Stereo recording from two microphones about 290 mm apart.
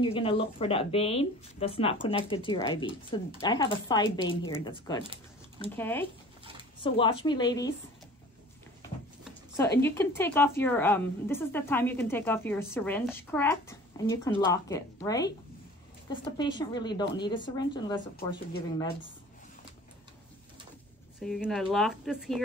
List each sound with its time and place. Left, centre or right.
0.0 s a woman's voice: centre
6.8 s a woman's voice: centre
9.8 s a woman's voice: centre
21.2 s speech: centre